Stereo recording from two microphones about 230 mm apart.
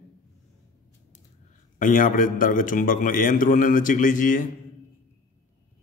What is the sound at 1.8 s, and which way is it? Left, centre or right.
A man's voice, left.